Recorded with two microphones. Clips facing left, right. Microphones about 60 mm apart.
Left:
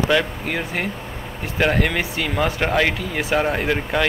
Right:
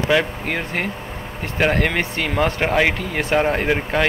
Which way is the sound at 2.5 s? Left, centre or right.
Centre.